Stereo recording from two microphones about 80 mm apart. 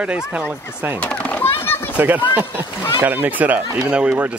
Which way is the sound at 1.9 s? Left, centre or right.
Centre.